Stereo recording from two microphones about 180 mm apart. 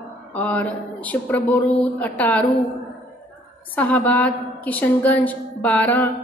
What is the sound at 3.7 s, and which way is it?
A woman's voice, 10° left (ahead or behind).